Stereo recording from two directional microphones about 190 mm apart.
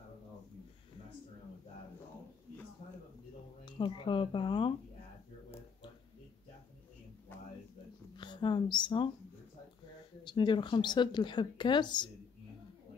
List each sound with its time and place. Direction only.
3.6 s speech: 25° left (ahead or behind)
7.3 s a sound: 10° left (ahead or behind)
8.2 s speech: 25° left (ahead or behind)
10.2 s speech: 25° left (ahead or behind)